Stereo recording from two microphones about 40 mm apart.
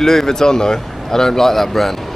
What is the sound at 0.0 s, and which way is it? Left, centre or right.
Speech, centre.